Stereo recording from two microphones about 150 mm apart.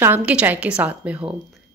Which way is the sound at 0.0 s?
10° right (ahead or behind).